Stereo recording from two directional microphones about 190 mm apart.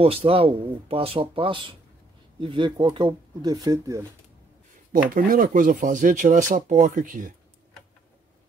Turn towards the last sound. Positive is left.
turn(degrees=-45)  # may be behind; listen again after turning